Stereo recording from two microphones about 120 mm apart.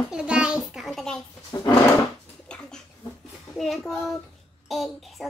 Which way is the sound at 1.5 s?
30° left (ahead or behind).